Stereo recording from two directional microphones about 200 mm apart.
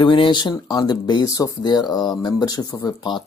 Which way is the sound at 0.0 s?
25° left (ahead or behind).